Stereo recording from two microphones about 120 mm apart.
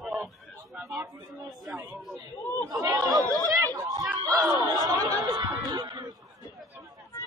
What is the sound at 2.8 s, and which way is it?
Chatter, 30° right (ahead or behind).